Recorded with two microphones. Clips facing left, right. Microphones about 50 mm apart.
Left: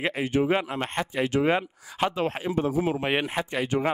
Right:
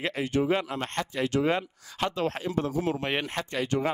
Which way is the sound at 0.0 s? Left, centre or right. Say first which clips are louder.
Left 2 dB; centre.